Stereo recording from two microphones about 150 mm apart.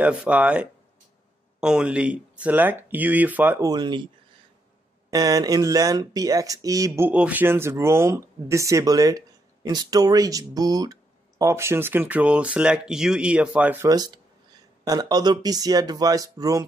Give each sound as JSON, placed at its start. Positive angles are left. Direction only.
{"t": 0.0, "sound": "speech", "side_deg": -10}
{"t": 3.6, "sound": "speech", "side_deg": -30}
{"t": 5.1, "sound": "speech", "side_deg": -25}
{"t": 7.1, "sound": "speech", "side_deg": -10}
{"t": 13.8, "sound": "speech", "side_deg": -25}